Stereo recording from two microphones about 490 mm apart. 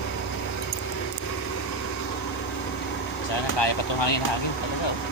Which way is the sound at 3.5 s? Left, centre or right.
Left.